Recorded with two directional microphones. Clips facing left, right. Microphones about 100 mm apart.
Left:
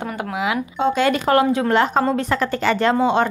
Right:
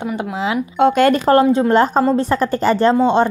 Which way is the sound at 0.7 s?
55° right (ahead or behind).